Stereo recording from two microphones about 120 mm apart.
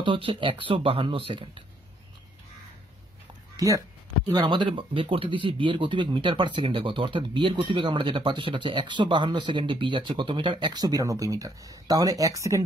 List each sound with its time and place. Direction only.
0.0 s speech: 45° right (ahead or behind)
3.5 s speech: 30° right (ahead or behind)
4.3 s speech: 40° right (ahead or behind)